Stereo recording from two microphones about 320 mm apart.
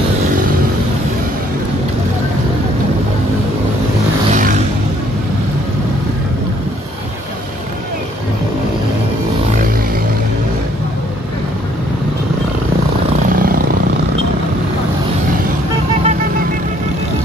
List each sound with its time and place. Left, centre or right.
4.3 s vehicle: right
13.4 s vehicle: right